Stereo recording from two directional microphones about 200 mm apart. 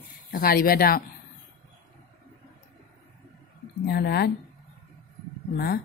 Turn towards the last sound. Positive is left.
turn(degrees=50)  # may be behind; listen again after turning